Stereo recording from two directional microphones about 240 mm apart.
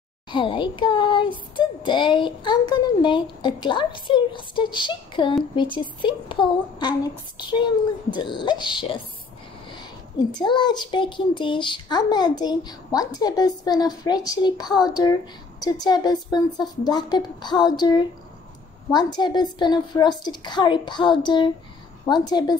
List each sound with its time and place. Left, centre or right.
0.3 s child singing: centre
10.3 s a child's voice: centre
18.9 s child singing: centre
22.0 s a child's voice: centre